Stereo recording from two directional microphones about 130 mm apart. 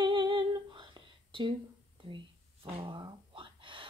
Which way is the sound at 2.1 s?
45° right (ahead or behind).